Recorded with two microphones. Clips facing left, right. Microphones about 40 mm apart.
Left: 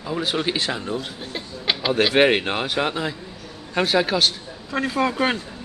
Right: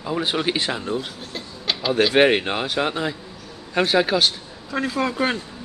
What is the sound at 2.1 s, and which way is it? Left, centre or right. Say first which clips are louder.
Speech: right 1 dB; centre.